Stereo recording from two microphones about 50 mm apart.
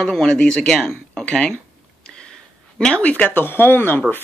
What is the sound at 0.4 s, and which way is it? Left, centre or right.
Speech, centre.